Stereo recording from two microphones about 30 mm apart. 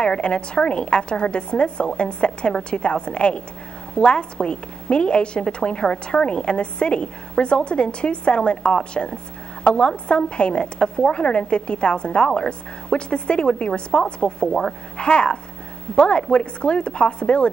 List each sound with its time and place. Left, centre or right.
0.0 s a woman's voice: left
8.9 s a woman's voice: left